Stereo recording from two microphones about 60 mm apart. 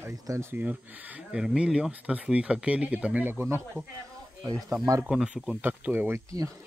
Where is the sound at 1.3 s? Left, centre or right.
Centre.